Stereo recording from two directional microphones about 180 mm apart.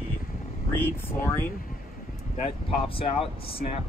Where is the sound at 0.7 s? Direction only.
10° left (ahead or behind).